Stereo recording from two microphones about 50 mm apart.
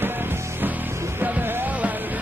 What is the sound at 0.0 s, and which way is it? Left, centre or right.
Music, right.